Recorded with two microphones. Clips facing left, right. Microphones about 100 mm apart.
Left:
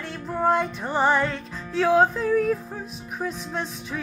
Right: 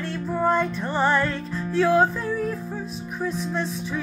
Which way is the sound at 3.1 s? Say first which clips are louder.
Right 2 dB; 20° left (ahead or behind).